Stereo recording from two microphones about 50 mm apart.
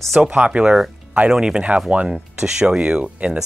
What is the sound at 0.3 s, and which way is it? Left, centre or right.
Speech, right.